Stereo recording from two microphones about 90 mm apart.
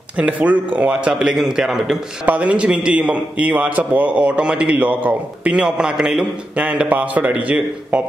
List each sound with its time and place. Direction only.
0.2 s a man's voice: 15° right (ahead or behind)